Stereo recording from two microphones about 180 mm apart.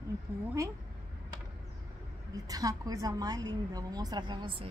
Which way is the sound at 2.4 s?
20° right (ahead or behind).